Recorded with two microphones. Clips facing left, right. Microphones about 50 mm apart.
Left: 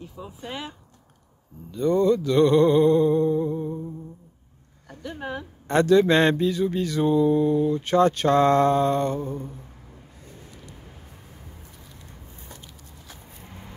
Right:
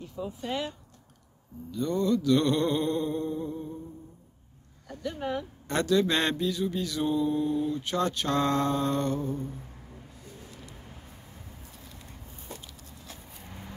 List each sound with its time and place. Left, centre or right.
0.0 s speech: centre
1.7 s mantra: left
4.8 s speech: centre
5.7 s speech: left
7.1 s mantra: left
7.8 s speech: left
13.4 s vehicle: centre